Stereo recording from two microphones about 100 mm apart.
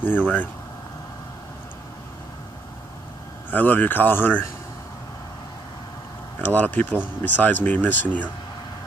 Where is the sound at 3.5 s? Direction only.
20° left (ahead or behind).